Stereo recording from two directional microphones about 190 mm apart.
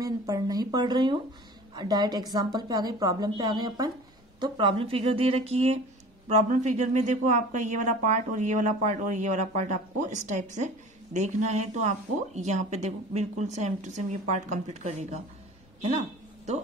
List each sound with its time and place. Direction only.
0.0 s a woman's voice: 20° right (ahead or behind); by 15.1 s 35° right (ahead or behind)